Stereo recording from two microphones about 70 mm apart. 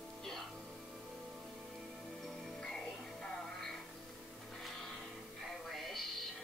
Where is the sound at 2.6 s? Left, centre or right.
Centre.